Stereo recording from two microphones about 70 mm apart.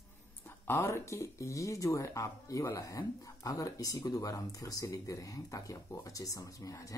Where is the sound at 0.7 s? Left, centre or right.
Left.